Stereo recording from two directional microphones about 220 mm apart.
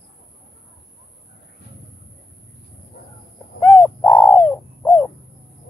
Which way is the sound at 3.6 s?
15° left (ahead or behind).